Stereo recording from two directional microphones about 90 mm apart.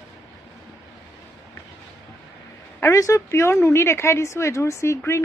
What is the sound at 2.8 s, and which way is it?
Speech, 35° left (ahead or behind).